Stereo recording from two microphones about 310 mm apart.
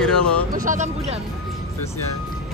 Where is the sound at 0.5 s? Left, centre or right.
Right.